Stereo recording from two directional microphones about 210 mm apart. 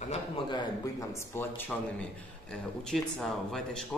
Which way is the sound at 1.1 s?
10° left (ahead or behind).